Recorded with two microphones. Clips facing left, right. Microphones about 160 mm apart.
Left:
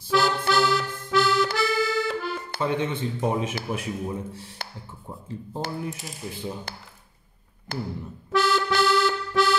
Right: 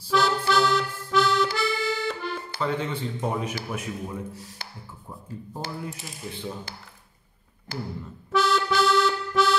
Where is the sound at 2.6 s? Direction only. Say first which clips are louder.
Left 2 dB; 20° left (ahead or behind).